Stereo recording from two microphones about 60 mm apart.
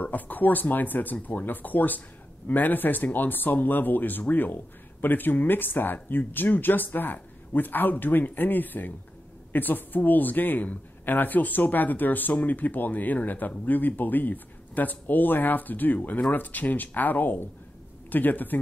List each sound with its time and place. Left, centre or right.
0.0 s speech: left